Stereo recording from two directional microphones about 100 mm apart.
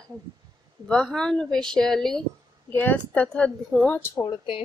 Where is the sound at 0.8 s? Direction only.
5° left (ahead or behind).